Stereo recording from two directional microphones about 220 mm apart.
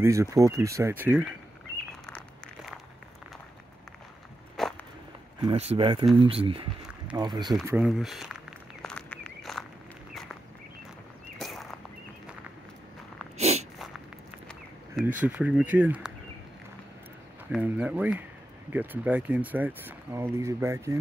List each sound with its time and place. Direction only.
0.0 s speech: 15° right (ahead or behind)
2.0 s a sound: 5° left (ahead or behind)
4.6 s walk: centre (ahead or behind)
5.4 s speech: 25° right (ahead or behind)
7.6 s speech: 5° right (ahead or behind)
8.8 s walk: 5° left (ahead or behind)
11.3 s a sound: centre (ahead or behind)
13.4 s a sound: 30° right (ahead or behind)
15.1 s speech: 5° right (ahead or behind)
17.5 s speech: 5° right (ahead or behind)